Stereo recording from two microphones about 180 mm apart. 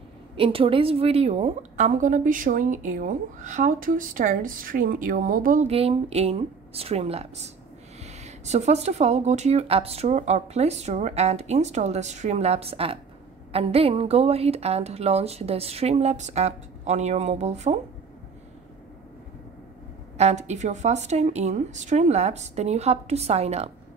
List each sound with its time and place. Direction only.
0.4 s a woman's voice: 30° right (ahead or behind); by 5.7 s 50° right (ahead or behind)
5.7 s speech: 35° right (ahead or behind)
20.2 s speech: 40° right (ahead or behind)